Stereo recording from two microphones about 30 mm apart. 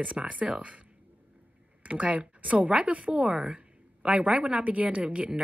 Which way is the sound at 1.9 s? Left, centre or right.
Right.